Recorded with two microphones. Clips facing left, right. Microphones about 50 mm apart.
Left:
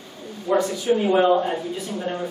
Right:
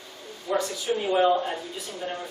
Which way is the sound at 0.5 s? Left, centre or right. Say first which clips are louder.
Left 6 dB; centre.